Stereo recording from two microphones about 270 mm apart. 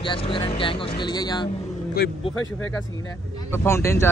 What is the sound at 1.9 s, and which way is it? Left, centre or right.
Speech, left.